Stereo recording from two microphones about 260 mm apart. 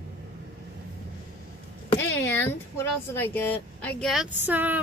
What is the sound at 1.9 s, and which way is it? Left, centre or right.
Speech, centre.